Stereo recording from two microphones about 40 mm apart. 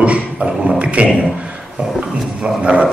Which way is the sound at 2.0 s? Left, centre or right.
Right.